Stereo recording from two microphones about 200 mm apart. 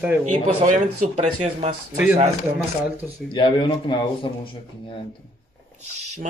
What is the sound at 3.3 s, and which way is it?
Speech, 25° left (ahead or behind).